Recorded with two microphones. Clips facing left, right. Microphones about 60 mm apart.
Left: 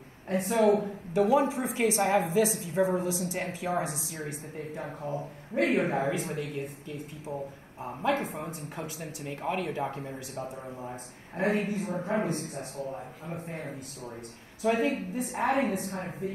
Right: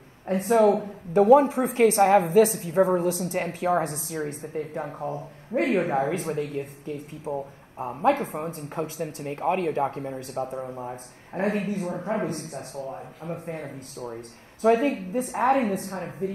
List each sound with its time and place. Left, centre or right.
0.3 s a woman's voice: right